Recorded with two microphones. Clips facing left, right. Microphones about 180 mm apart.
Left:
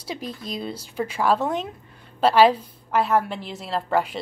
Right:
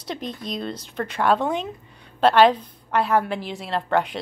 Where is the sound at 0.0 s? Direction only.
5° left (ahead or behind).